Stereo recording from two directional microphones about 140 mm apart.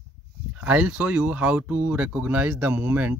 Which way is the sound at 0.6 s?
10° right (ahead or behind).